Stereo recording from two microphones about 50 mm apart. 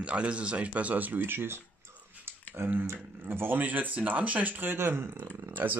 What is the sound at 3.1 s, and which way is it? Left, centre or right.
Speech, right.